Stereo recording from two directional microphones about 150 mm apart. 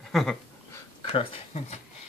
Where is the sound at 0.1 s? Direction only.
Centre (ahead or behind).